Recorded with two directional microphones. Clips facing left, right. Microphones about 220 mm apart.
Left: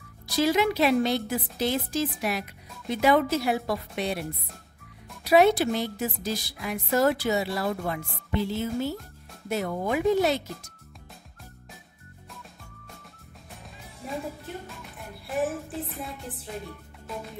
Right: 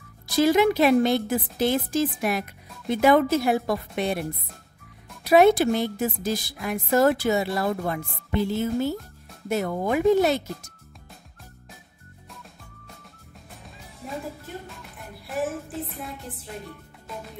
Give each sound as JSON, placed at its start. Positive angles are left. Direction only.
{"t": 0.4, "sound": "speech", "side_deg": -50}
{"t": 5.2, "sound": "speech", "side_deg": -50}
{"t": 14.0, "sound": "speech", "side_deg": 0}